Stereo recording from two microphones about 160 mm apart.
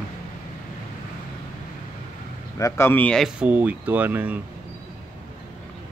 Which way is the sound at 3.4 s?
10° right (ahead or behind).